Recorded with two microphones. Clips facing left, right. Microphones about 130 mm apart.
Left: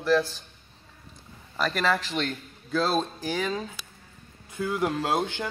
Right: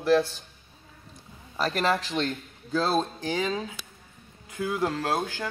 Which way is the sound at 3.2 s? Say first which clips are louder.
Right 1 dB; 20° right (ahead or behind).